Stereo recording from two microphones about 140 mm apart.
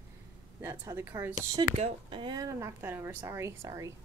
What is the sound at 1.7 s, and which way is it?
Speech, 50° right (ahead or behind).